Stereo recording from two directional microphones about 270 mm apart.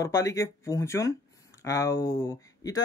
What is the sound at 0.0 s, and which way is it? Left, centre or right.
Speech, centre.